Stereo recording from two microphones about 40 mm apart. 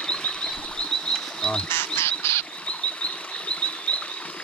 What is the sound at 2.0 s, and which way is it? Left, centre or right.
Bird, left.